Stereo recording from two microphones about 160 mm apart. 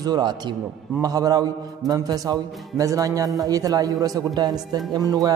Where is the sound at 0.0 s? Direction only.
25° right (ahead or behind).